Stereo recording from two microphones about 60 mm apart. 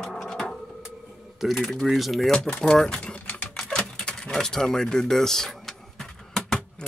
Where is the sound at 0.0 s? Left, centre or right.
Centre.